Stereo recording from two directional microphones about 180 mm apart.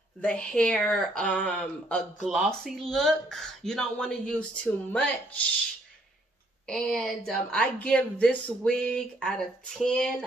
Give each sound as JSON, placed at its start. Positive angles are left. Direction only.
{"t": 0.2, "sound": "a woman's voice", "side_deg": 5}
{"t": 6.6, "sound": "a woman's voice", "side_deg": 5}